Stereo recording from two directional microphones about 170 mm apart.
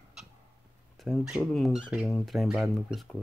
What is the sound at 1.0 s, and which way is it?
Speech, centre (ahead or behind).